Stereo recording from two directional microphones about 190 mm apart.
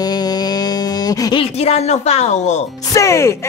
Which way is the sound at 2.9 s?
15° left (ahead or behind).